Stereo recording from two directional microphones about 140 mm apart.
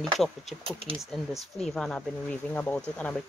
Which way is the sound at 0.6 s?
40° right (ahead or behind).